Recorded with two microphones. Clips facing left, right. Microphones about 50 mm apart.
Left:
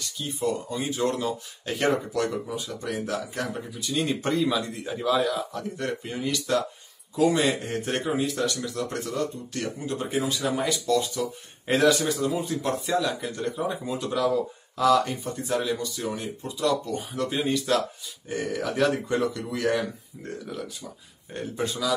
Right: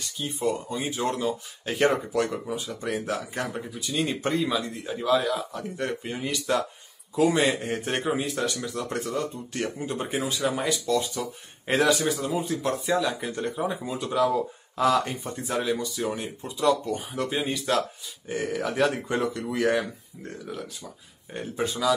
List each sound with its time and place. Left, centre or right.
0.2 s speech: centre
3.8 s speech: centre; by 10.3 s right
10.4 s speech: centre
14.8 s speech: right